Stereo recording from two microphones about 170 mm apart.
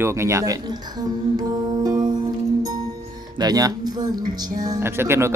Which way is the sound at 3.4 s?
20° right (ahead or behind).